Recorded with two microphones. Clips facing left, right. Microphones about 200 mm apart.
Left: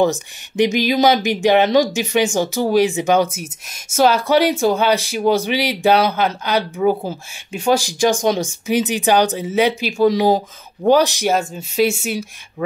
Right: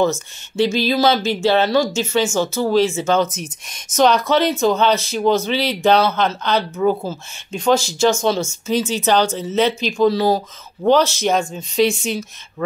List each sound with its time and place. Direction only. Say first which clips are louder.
0.0 s speech: left 1 dB; 15° left (ahead or behind)